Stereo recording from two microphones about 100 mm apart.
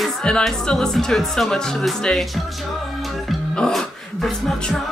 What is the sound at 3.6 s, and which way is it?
Speech, centre (ahead or behind).